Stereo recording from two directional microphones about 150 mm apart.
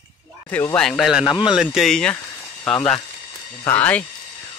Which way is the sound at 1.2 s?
25° left (ahead or behind).